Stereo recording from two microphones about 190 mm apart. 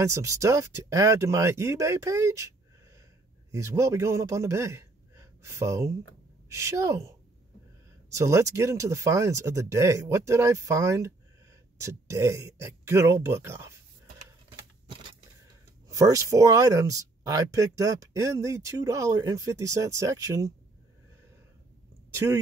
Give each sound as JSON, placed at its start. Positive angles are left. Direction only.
{"t": 0.0, "sound": "speech", "side_deg": -15}
{"t": 3.5, "sound": "a man's voice", "side_deg": -15}
{"t": 8.2, "sound": "speech", "side_deg": -15}
{"t": 15.9, "sound": "speech", "side_deg": -20}
{"t": 22.1, "sound": "speech", "side_deg": -15}